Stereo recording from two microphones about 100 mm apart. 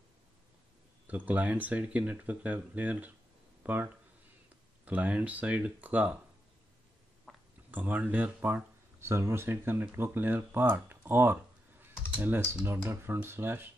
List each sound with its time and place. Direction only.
1.0 s speech: 15° right (ahead or behind)
7.3 s a sound: centre (ahead or behind)
7.7 s speech: 15° right (ahead or behind)
12.6 s speech: 25° right (ahead or behind)